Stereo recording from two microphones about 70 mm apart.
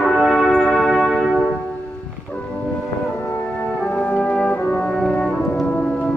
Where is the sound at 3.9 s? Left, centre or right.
Centre.